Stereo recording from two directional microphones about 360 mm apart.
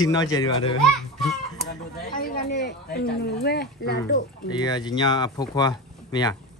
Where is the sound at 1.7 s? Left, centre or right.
Left.